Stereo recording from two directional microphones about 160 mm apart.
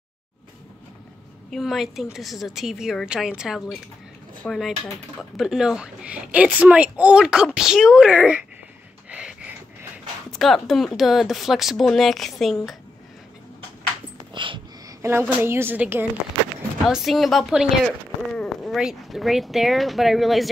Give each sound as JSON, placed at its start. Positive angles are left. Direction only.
{"t": 1.5, "sound": "a woman's voice", "side_deg": 0}
{"t": 9.1, "sound": "a sound", "side_deg": -10}
{"t": 10.3, "sound": "a woman's voice", "side_deg": 0}
{"t": 14.3, "sound": "a sound", "side_deg": -30}
{"t": 15.0, "sound": "a woman's voice", "side_deg": -15}
{"t": 16.8, "sound": "a woman's voice", "side_deg": 0}